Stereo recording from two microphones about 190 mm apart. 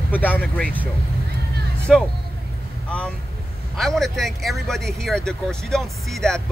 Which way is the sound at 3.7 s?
Centre (ahead or behind).